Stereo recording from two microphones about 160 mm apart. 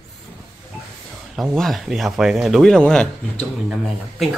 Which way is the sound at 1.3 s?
Centre (ahead or behind).